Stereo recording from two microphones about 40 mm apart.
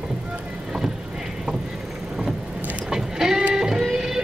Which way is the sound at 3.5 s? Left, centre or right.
Centre.